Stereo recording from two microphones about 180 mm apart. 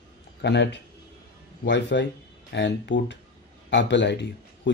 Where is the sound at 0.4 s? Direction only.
75° left (ahead or behind).